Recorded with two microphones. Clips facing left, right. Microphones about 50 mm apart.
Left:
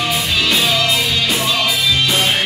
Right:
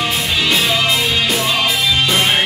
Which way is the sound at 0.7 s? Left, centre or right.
Right.